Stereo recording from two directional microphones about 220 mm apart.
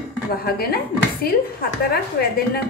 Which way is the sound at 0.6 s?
45° left (ahead or behind).